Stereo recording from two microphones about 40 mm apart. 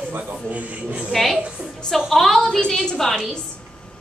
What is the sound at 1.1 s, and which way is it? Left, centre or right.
A woman's voice, centre.